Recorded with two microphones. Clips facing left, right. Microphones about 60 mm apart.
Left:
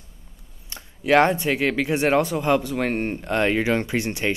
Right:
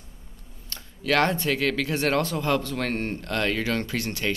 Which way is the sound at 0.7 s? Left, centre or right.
Centre.